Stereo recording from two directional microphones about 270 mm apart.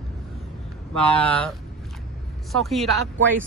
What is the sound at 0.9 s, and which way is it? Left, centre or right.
Speech, centre.